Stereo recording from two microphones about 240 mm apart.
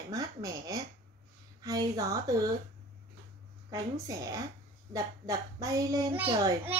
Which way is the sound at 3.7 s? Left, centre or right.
Centre.